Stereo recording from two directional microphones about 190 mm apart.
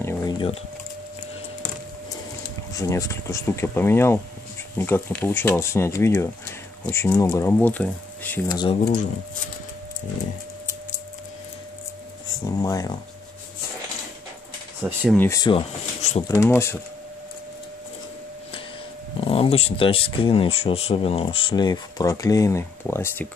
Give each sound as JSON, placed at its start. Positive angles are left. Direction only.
{"t": 0.0, "sound": "a sound", "side_deg": 15}
{"t": 2.7, "sound": "speech", "side_deg": 15}
{"t": 8.5, "sound": "speech", "side_deg": 20}
{"t": 12.4, "sound": "speech", "side_deg": 20}
{"t": 14.8, "sound": "speech", "side_deg": -5}
{"t": 15.1, "sound": "speech", "side_deg": 15}
{"t": 16.0, "sound": "speech", "side_deg": 35}
{"t": 16.3, "sound": "speech", "side_deg": 15}
{"t": 19.1, "sound": "speech", "side_deg": 30}